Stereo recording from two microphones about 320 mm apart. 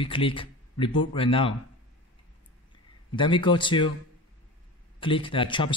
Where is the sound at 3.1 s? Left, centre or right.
Centre.